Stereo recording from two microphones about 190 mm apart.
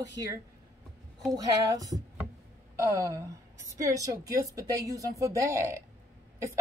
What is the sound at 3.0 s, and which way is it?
A woman's voice, 15° right (ahead or behind).